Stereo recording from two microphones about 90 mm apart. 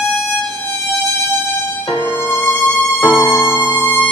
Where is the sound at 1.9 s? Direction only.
25° left (ahead or behind).